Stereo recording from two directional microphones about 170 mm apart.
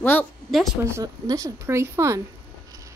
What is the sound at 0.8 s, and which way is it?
A woman's voice, 20° right (ahead or behind).